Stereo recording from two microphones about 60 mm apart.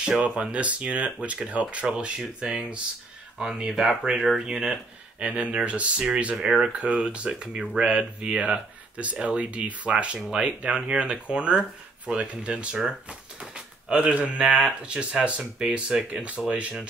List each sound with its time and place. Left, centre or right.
0.0 s speech: centre
16.1 s speech: right